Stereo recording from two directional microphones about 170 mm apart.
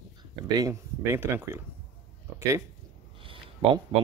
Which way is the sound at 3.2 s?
30° right (ahead or behind).